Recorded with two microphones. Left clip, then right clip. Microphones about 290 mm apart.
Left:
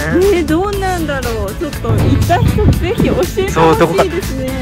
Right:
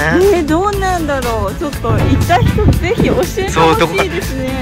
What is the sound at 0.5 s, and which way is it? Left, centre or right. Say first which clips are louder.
Music: right 1 dB; right.